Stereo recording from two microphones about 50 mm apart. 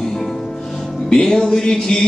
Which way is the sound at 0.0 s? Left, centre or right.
Centre.